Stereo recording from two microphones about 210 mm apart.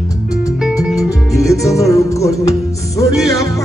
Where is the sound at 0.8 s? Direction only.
Centre (ahead or behind).